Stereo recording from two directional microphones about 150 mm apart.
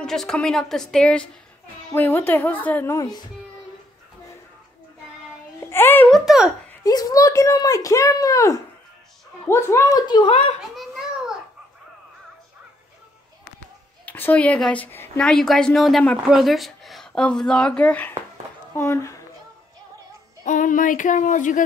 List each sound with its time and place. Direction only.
0.0 s a woman's voice: 5° left (ahead or behind); by 3.3 s 25° left (ahead or behind)
5.7 s a child's voice: 15° left (ahead or behind)
6.1 s a woman's voice: centre (ahead or behind)
6.8 s speech: 25° left (ahead or behind)
10.8 s a sound: 5° right (ahead or behind)
14.0 s a woman's voice: 10° left (ahead or behind)
20.4 s speech: 60° left (ahead or behind)